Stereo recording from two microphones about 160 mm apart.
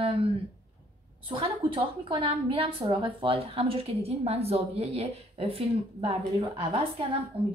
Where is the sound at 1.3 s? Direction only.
35° right (ahead or behind).